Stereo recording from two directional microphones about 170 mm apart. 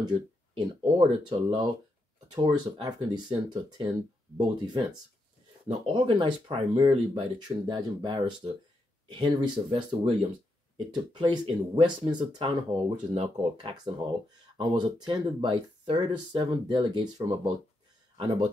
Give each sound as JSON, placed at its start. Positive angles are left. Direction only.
{"t": 0.6, "sound": "speech", "side_deg": -30}
{"t": 11.1, "sound": "speech", "side_deg": -30}